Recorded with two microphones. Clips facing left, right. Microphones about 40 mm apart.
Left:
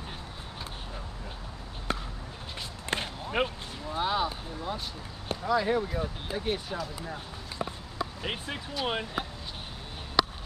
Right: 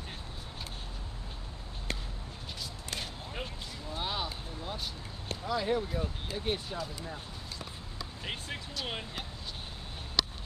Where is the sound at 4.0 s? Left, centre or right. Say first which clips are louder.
Left 7 dB; centre.